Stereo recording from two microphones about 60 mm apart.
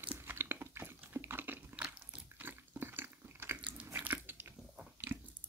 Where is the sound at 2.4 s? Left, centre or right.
Right.